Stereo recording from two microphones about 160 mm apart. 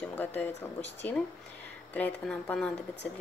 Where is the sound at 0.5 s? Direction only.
45° left (ahead or behind).